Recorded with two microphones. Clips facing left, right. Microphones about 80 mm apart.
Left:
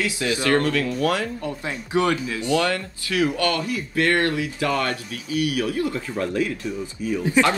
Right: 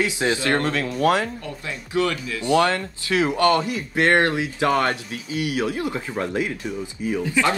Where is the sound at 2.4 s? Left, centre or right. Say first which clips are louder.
Right 4 dB; right.